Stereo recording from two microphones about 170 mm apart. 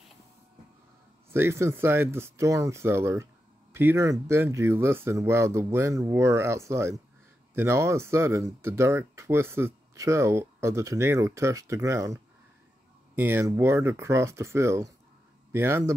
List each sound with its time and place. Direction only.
1.3 s speech: 15° right (ahead or behind)